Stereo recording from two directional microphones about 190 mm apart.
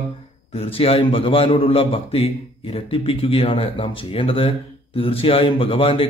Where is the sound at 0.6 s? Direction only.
30° left (ahead or behind).